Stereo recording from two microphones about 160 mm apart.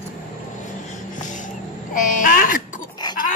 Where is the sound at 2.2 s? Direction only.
60° left (ahead or behind).